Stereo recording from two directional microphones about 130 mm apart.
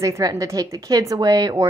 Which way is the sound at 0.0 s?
25° right (ahead or behind).